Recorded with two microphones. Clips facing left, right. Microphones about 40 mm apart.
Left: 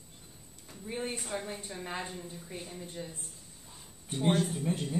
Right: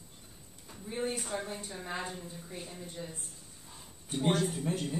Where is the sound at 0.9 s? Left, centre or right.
Centre.